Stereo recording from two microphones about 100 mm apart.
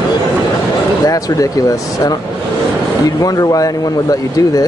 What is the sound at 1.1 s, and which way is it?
Speech, 35° left (ahead or behind).